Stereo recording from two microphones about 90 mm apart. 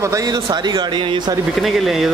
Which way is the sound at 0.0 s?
40° right (ahead or behind).